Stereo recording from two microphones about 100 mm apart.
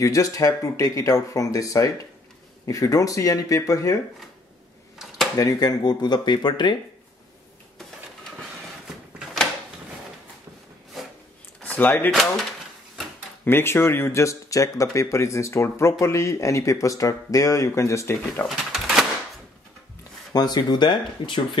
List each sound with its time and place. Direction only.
0.0 s speech: 35° left (ahead or behind)
5.4 s speech: 35° left (ahead or behind)
11.6 s speech: 15° left (ahead or behind)
13.5 s speech: 25° left (ahead or behind)
18.5 s a sound: 5° right (ahead or behind)
20.3 s speech: 45° left (ahead or behind)